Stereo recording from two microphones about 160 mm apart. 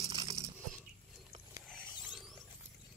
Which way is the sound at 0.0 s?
25° right (ahead or behind).